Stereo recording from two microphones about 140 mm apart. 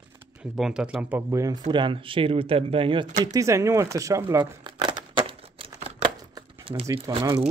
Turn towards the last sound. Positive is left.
turn(degrees=-25)  # may be behind; listen again after turning